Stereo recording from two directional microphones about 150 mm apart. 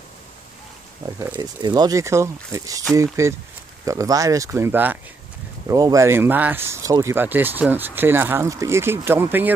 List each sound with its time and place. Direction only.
1.0 s speech: 15° right (ahead or behind)
1.4 s speech: 30° right (ahead or behind)